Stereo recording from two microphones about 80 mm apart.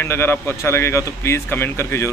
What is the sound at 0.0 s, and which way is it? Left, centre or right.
Speech, left.